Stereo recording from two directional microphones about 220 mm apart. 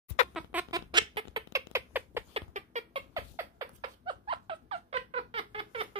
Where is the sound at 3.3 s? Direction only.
20° right (ahead or behind).